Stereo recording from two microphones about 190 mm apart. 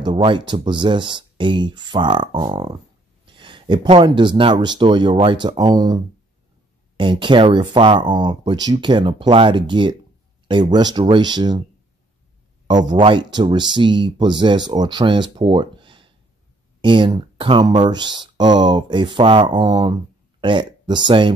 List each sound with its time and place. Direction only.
0.0 s speech: 25° right (ahead or behind)
7.0 s speech: 25° right (ahead or behind)
12.6 s speech: 20° right (ahead or behind)